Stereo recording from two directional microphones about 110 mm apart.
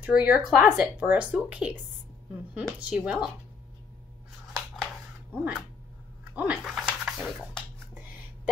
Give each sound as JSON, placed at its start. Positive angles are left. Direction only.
{"t": 0.0, "sound": "speech", "side_deg": -15}
{"t": 2.8, "sound": "speech", "side_deg": -10}
{"t": 5.3, "sound": "dog", "side_deg": -15}
{"t": 6.3, "sound": "speech", "side_deg": -15}
{"t": 6.6, "sound": "speech", "side_deg": 0}